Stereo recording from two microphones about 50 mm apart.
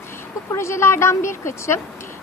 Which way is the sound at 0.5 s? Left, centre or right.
Left.